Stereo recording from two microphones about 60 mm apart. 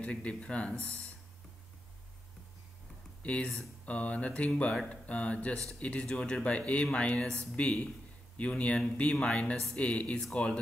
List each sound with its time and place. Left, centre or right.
0.0 s speech: centre
3.2 s a sound: left
3.8 s speech: left